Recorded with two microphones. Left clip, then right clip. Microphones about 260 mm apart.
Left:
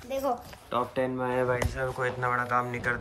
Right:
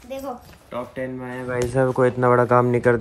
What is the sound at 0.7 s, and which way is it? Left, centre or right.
Speech, centre.